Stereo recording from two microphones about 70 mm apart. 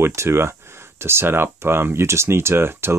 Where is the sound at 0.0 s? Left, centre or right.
Right.